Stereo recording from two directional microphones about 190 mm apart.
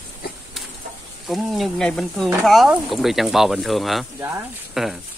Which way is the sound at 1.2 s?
Centre (ahead or behind).